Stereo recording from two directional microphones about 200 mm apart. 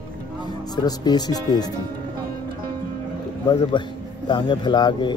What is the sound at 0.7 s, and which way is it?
Speech, 20° left (ahead or behind).